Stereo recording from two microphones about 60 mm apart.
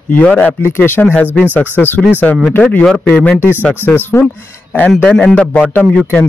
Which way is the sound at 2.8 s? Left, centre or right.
Centre.